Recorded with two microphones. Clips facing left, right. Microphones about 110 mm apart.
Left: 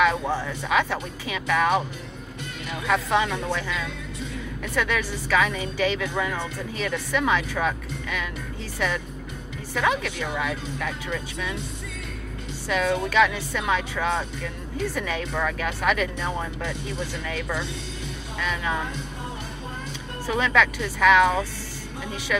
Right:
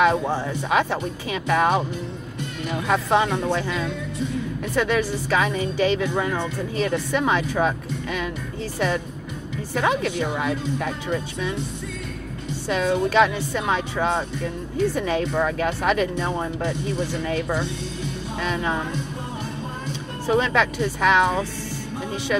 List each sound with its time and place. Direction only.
0.3 s speech: 30° right (ahead or behind)
12.6 s speech: 30° right (ahead or behind)
20.2 s speech: 35° right (ahead or behind)